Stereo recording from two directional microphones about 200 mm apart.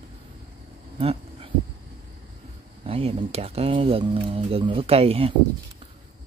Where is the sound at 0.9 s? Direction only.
30° right (ahead or behind).